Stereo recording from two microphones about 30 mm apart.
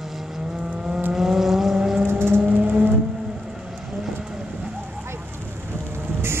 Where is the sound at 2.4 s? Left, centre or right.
Right.